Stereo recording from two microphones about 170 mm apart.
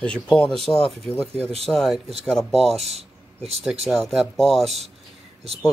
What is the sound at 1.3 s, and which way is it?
Speech, 35° right (ahead or behind).